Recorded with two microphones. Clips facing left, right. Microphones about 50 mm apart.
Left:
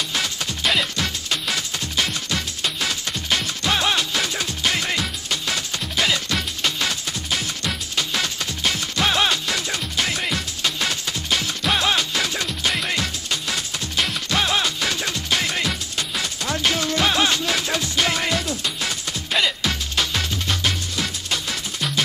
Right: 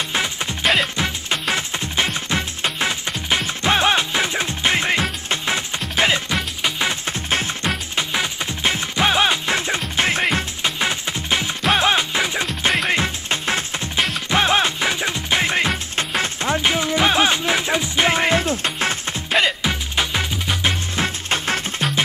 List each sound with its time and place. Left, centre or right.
0.1 s music: right
20.9 s music: right